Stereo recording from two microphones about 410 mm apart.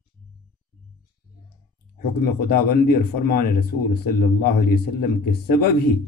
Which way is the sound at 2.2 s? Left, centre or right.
Left.